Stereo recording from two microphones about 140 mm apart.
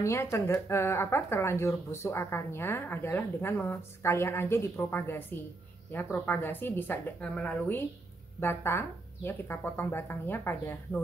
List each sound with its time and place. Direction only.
0.0 s speech: 20° left (ahead or behind)